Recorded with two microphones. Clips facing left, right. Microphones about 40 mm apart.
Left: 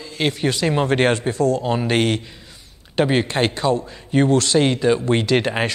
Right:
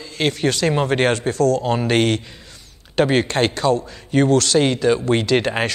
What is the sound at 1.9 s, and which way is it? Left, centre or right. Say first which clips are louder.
Speech: right 2 dB; centre.